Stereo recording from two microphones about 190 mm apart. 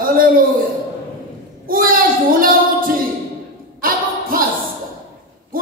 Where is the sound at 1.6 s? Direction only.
50° right (ahead or behind).